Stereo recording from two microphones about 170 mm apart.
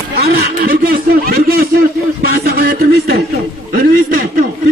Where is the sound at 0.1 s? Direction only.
70° right (ahead or behind).